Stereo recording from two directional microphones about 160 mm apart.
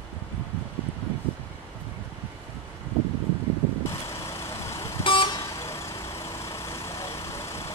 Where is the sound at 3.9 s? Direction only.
20° left (ahead or behind).